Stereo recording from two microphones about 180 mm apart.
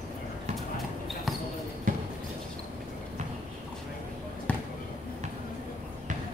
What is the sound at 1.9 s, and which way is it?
Basketball bounce, 50° right (ahead or behind).